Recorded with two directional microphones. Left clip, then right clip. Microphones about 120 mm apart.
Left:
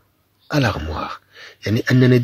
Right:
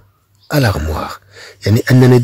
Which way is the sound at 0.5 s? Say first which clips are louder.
Right 4 dB; 25° right (ahead or behind).